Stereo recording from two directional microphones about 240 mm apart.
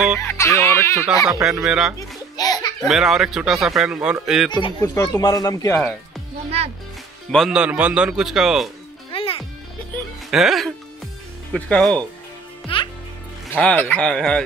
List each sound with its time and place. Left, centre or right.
0.2 s fowl: centre
1.4 s speech: centre
2.3 s a sound: centre
2.9 s speech: centre
4.5 s speech: centre
7.2 s speech: centre
9.1 s music: left
10.3 s speech: centre
12.7 s music: left
13.5 s speech: centre